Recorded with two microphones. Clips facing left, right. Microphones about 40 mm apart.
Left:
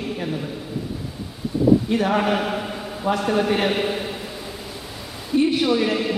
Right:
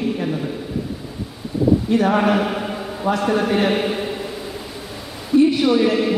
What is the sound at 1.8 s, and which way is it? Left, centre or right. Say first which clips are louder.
Speech: right 4 dB; centre.